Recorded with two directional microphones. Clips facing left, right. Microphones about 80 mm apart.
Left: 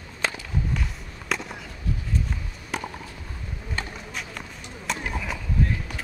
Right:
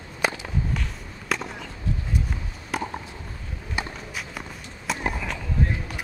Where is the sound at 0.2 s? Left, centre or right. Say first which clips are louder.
Right 3 dB; centre.